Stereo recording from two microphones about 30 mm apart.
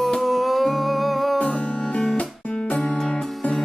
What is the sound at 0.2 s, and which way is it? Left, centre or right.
Music, centre.